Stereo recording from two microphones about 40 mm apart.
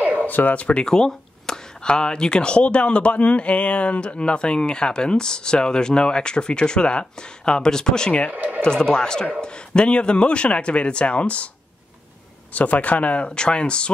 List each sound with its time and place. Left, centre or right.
0.2 s speech: left
0.8 s speech: centre
8.3 s speech: right
8.6 s speech: centre
12.5 s speech: left